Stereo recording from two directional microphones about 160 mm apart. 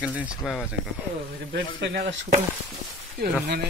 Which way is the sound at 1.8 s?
90° right.